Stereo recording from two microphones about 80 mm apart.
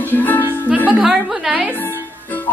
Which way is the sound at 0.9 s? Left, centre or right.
Centre.